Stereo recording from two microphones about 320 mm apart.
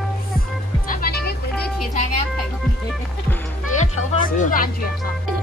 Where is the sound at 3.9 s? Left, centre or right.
Left.